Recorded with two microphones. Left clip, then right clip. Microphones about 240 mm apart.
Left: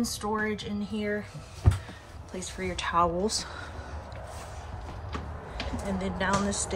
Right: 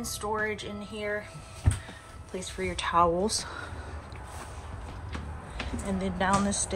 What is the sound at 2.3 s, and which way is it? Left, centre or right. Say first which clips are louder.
Speech: right 1 dB; centre.